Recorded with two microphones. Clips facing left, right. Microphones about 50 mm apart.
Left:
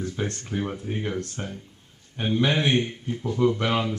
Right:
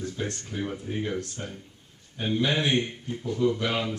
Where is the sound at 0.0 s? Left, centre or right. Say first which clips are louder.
Left 3 dB; left.